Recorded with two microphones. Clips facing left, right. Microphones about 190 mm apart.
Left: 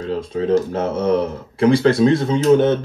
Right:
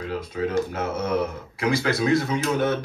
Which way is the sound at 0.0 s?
30° left (ahead or behind).